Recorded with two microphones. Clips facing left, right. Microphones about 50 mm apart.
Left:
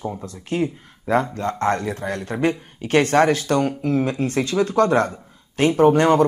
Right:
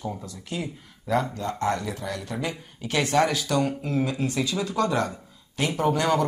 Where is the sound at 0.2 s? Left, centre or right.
Left.